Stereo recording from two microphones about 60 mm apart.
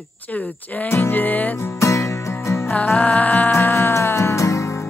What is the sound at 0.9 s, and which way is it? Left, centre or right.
Music, left.